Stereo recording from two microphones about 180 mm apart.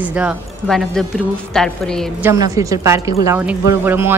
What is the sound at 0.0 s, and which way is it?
A woman's voice, 5° right (ahead or behind).